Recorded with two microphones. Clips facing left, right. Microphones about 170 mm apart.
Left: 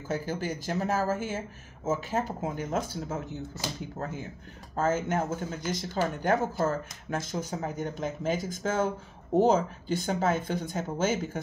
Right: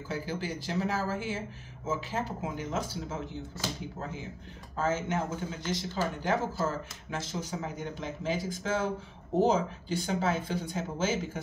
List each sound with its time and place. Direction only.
0.1 s speech: 45° left (ahead or behind)
4.7 s speech: 45° left (ahead or behind)